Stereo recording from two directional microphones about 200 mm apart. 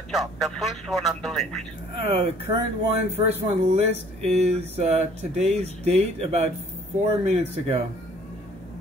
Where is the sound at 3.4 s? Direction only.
35° right (ahead or behind).